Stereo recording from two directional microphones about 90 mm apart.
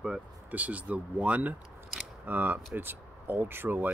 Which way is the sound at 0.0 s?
10° right (ahead or behind).